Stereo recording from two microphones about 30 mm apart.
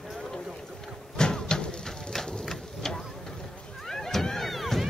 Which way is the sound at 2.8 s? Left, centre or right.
Centre.